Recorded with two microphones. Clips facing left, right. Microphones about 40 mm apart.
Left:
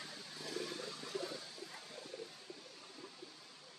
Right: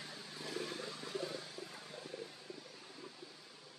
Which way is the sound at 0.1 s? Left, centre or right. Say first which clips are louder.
Right 2 dB; right.